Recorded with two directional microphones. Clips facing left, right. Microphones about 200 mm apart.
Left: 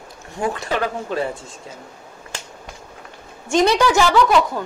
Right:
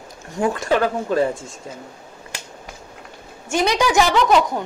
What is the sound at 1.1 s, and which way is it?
Speech, 45° right (ahead or behind).